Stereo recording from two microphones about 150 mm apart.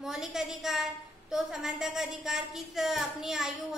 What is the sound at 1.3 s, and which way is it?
A woman's voice, 5° right (ahead or behind).